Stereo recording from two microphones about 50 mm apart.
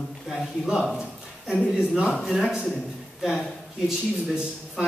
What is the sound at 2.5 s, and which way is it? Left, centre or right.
Speech, centre.